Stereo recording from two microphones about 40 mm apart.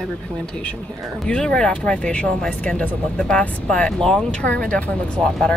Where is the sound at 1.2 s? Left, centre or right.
Left.